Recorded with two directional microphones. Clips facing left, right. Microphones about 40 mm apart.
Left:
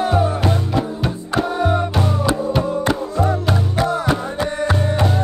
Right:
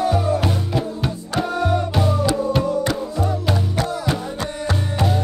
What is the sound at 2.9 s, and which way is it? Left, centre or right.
Music, left.